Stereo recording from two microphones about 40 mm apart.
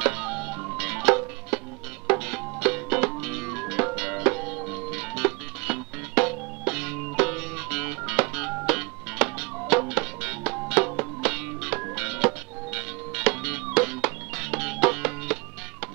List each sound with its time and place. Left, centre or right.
0.0 s music: centre